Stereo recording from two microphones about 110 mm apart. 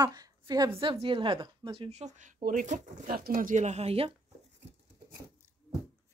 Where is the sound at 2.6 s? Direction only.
90° right; by 4.1 s 65° right (ahead or behind).